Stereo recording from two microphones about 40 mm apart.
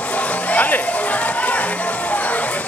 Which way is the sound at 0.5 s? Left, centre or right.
Left.